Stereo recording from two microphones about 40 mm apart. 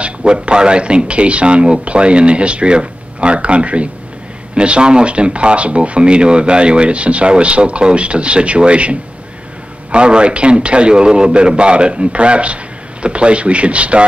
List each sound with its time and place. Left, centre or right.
0.0 s speech: right